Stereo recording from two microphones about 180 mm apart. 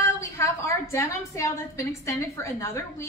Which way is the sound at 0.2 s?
15° left (ahead or behind).